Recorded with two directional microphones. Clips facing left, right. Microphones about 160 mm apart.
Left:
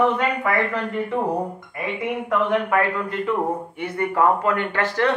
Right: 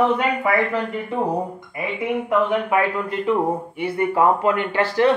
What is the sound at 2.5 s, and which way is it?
Speech, 15° right (ahead or behind).